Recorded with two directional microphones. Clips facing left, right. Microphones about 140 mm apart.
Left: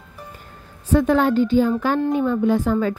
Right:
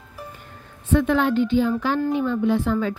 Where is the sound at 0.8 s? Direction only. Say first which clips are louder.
Left 3 dB; 40° left (ahead or behind).